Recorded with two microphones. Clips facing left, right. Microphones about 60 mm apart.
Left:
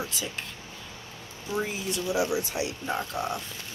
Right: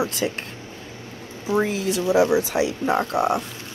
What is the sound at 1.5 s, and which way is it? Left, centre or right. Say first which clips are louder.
Speech: right 9 dB; right.